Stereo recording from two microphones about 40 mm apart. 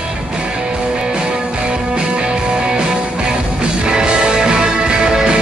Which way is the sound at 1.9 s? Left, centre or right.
Right.